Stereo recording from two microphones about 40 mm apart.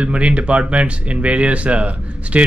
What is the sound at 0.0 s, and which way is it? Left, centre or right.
Speech, right.